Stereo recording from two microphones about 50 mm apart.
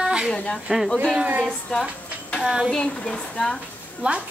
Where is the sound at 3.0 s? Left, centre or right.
Centre.